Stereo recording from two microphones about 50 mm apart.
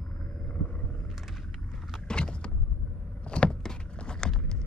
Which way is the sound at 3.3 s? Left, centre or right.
Left.